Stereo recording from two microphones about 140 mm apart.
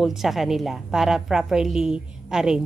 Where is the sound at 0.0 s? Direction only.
Centre (ahead or behind).